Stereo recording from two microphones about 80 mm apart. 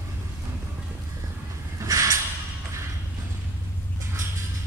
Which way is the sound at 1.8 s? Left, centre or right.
Right.